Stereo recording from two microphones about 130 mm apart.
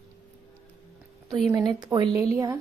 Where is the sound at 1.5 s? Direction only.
30° right (ahead or behind).